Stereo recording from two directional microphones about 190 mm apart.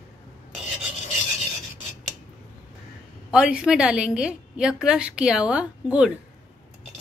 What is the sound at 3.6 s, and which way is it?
A woman's voice, 5° right (ahead or behind).